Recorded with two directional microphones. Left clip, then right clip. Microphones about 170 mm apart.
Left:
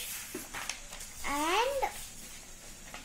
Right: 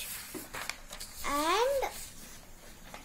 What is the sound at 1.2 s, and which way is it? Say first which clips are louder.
Speech: right 1 dB; 35° right (ahead or behind).